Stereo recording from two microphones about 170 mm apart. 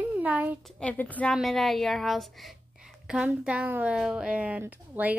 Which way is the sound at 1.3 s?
Centre (ahead or behind).